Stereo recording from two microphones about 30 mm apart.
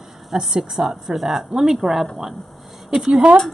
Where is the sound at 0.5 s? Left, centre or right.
Centre.